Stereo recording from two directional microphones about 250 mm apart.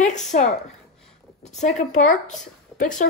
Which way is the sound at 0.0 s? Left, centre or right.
Left.